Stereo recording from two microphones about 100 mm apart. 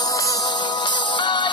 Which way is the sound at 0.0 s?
35° left (ahead or behind).